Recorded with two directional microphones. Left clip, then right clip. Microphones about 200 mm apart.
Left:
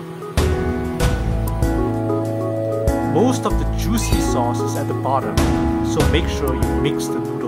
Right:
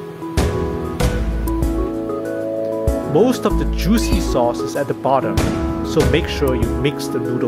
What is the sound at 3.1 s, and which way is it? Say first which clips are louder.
Speech: right 5 dB; 15° right (ahead or behind).